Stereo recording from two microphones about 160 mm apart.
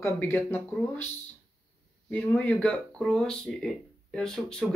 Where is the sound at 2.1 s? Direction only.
10° left (ahead or behind).